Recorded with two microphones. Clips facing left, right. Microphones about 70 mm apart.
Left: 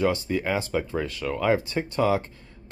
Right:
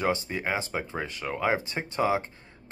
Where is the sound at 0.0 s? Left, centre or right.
Right.